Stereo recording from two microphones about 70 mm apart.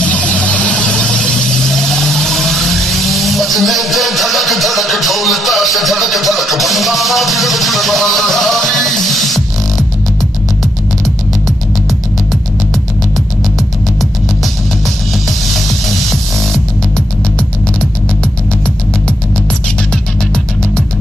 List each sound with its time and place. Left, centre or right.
0.0 s vehicle: centre
2.0 s vehicle: centre